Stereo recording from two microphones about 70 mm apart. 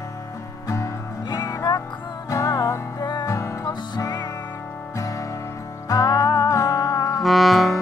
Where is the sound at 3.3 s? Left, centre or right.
Left.